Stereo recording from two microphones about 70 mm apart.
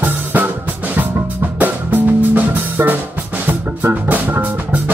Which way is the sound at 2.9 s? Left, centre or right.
Right.